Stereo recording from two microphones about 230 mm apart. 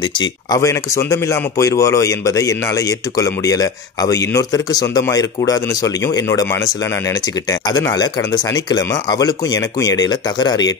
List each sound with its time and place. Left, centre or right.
0.2 s a man's voice: centre